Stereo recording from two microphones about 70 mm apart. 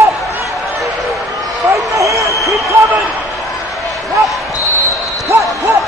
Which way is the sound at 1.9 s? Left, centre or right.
Right.